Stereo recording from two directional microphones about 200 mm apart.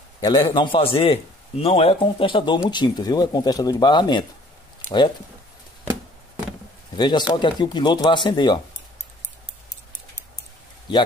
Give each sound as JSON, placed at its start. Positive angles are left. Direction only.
{"t": 0.2, "sound": "a man's voice", "side_deg": 25}
{"t": 7.0, "sound": "a man's voice", "side_deg": 20}